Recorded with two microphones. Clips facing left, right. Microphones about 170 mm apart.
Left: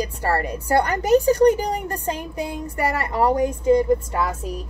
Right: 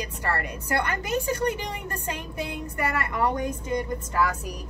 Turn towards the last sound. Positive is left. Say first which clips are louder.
# left 1 dB
turn(degrees=30)  # may be behind; listen again after turning